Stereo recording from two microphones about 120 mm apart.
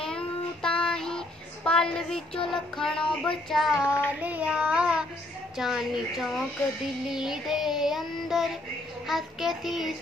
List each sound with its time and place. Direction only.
0.0 s child singing: 5° left (ahead or behind)
3.8 s child singing: 15° left (ahead or behind)
4.2 s child singing: 15° right (ahead or behind)